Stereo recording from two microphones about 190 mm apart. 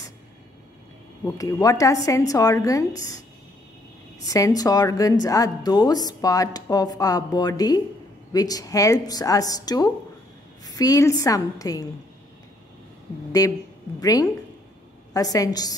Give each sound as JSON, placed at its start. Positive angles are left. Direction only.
{"t": 1.2, "sound": "a woman's voice", "side_deg": 15}
{"t": 4.3, "sound": "a woman's voice", "side_deg": 20}
{"t": 13.4, "sound": "a woman's voice", "side_deg": 20}